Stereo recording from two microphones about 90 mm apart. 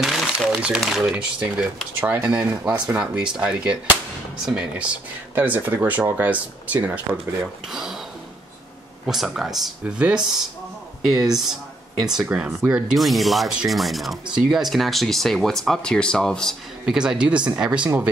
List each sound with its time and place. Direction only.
0.0 s crumpling: centre (ahead or behind)
0.7 s speech: 5° right (ahead or behind)
5.3 s speech: 20° right (ahead or behind)
7.1 s speech: 35° right (ahead or behind)
9.0 s speech: 5° right (ahead or behind)
16.8 s speech: 5° right (ahead or behind)